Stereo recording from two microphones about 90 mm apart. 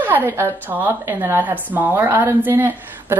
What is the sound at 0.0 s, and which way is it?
Speech, 20° right (ahead or behind).